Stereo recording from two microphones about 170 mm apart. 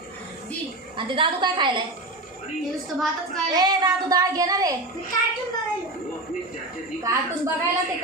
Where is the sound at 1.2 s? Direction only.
30° right (ahead or behind).